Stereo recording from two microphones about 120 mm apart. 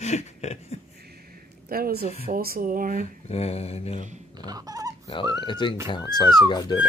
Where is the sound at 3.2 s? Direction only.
60° left (ahead or behind).